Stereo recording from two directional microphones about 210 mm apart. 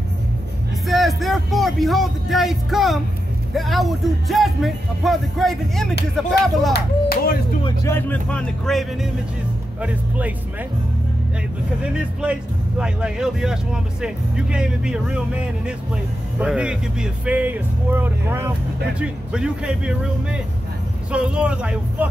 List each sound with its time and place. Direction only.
0.8 s music: centre (ahead or behind)
3.5 s speech: centre (ahead or behind)
6.7 s speech: 45° left (ahead or behind)
7.6 s speech: 10° left (ahead or behind); by 10.3 s 5° right (ahead or behind)
11.8 s speech: 5° right (ahead or behind)